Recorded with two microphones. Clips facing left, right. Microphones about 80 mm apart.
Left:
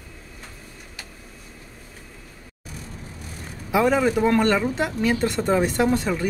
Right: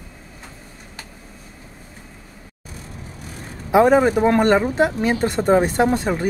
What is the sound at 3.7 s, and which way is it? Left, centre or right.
Speech, right.